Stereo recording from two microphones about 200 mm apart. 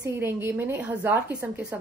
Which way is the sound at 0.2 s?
10° right (ahead or behind).